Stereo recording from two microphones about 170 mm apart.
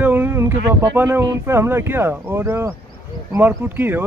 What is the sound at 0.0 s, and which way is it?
Speech, 10° right (ahead or behind).